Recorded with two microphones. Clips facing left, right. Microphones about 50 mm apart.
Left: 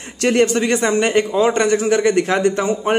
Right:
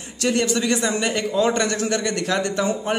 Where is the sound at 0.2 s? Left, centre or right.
Left.